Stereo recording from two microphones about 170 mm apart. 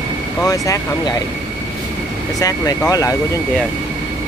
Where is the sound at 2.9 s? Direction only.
20° left (ahead or behind).